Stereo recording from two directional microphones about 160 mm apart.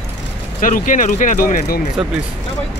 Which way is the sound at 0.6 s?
55° left (ahead or behind).